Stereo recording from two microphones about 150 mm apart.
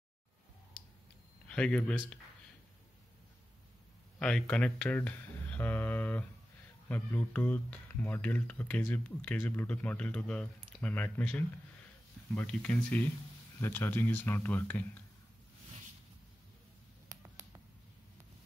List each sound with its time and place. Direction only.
1.5 s speech: 10° left (ahead or behind)
4.2 s a sound: 5° left (ahead or behind)
6.9 s speech: 10° left (ahead or behind)
17.1 s finger snapping: 20° right (ahead or behind)